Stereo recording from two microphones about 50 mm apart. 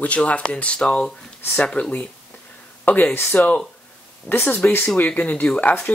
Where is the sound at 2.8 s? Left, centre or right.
Left.